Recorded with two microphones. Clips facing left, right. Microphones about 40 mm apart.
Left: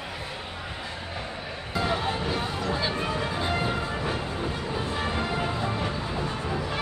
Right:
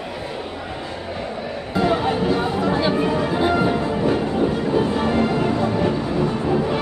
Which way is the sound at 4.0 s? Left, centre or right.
Right.